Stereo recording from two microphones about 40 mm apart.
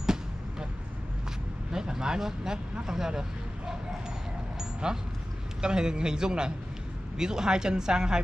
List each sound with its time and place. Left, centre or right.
0.0 s basketball bounce: centre
1.7 s speech: centre
4.8 s a man's voice: right